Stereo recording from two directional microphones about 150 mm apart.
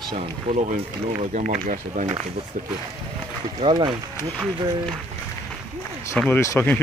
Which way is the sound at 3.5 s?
35° right (ahead or behind).